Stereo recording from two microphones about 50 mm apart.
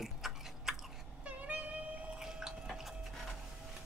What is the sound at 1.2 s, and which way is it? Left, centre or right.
Music, right.